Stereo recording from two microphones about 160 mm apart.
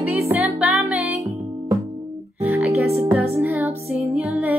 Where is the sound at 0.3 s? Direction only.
10° right (ahead or behind).